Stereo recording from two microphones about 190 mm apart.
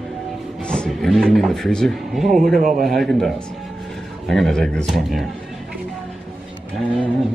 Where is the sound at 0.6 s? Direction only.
5° left (ahead or behind).